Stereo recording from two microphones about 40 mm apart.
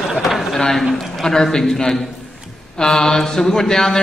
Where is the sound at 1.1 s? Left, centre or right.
Centre.